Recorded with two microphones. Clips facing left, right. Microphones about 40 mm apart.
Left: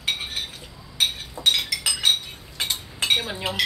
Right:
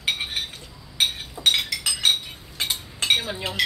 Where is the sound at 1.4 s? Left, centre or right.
Right.